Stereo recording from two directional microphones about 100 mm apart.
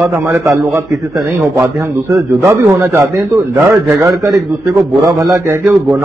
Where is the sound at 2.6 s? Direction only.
30° right (ahead or behind).